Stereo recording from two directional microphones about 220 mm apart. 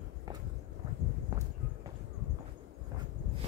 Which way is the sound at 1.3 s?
15° right (ahead or behind).